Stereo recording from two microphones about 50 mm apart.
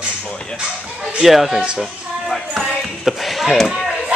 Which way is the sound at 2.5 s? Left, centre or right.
Centre.